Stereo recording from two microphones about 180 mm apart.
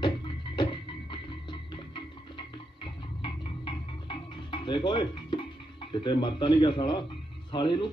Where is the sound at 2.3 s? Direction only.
25° left (ahead or behind).